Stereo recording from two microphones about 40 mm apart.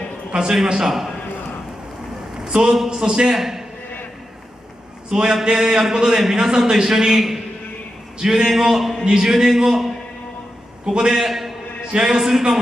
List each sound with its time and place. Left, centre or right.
0.3 s a man's voice: right
2.4 s a man's voice: centre
5.1 s a man's voice: centre
10.9 s a man's voice: right
11.2 s a sound: centre
11.9 s a man's voice: centre